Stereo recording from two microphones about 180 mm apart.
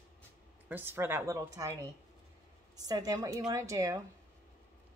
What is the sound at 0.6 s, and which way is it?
A woman's voice, 10° right (ahead or behind).